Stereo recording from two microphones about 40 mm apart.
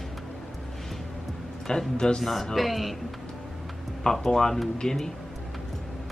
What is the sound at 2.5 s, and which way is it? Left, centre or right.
Speech, centre.